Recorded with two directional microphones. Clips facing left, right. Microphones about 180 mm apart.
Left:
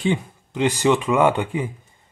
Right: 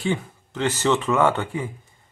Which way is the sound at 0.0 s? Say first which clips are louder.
Left 3 dB; 15° left (ahead or behind).